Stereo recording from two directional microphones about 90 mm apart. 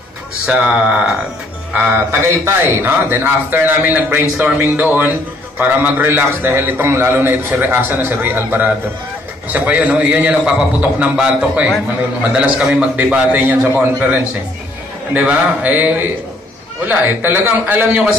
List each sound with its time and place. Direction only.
0.5 s a man's voice: 10° right (ahead or behind)
15.1 s a man's voice: 15° right (ahead or behind)